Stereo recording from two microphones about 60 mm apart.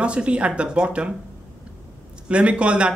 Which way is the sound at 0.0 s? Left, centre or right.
Centre.